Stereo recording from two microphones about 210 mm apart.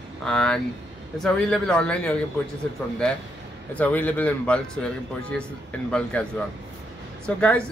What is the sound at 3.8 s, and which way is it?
Speech, 5° left (ahead or behind).